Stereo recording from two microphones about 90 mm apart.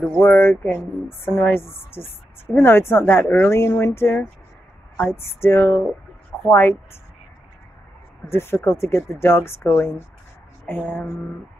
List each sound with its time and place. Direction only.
0.2 s speech: 25° left (ahead or behind)
8.3 s speech: 25° left (ahead or behind)